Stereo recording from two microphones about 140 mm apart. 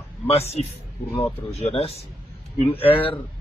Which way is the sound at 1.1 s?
45° left (ahead or behind).